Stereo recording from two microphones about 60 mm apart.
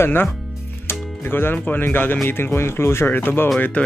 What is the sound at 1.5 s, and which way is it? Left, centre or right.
Speech, left.